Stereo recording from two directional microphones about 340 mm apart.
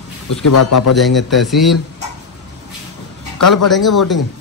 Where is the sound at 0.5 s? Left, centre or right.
Left.